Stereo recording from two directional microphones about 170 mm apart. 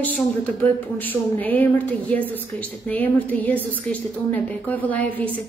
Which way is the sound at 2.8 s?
10° left (ahead or behind).